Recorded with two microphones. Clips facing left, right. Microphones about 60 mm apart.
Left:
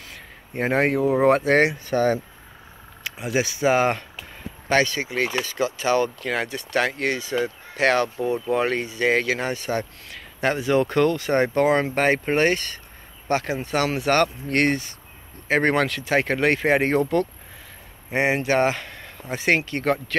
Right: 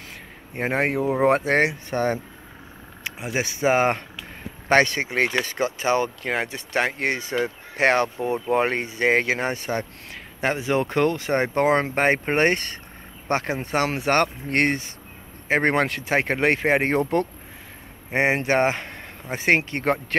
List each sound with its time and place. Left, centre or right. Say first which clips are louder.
0.6 s speech: left 2 dB; centre
3.0 s speech: left 3 dB; right
4.6 s speech: right 2 dB; right